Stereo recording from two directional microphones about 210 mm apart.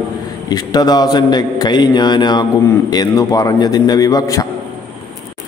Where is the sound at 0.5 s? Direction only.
20° left (ahead or behind).